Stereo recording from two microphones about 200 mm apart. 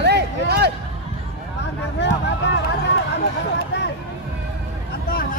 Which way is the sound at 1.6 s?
60° left (ahead or behind).